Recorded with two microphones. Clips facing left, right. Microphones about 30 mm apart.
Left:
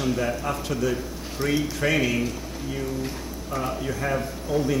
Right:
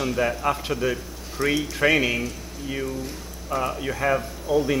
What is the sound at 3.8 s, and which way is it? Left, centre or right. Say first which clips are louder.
Speech: right 3 dB; right.